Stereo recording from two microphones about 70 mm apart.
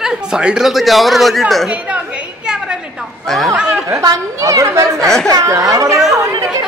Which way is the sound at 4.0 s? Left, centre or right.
Right.